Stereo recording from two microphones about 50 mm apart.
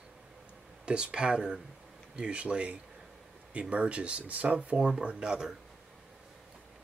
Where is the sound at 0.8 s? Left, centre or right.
Centre.